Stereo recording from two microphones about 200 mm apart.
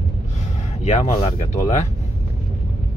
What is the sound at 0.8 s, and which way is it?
Speech, 35° left (ahead or behind).